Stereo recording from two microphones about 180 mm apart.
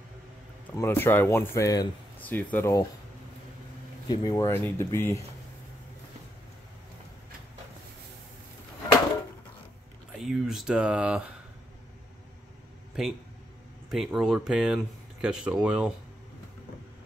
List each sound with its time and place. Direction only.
0.7 s speech: 15° left (ahead or behind)
4.1 s speech: 20° left (ahead or behind)
10.1 s speech: centre (ahead or behind)
13.8 s speech: centre (ahead or behind)